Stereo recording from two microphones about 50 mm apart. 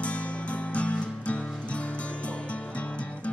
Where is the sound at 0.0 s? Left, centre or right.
Left.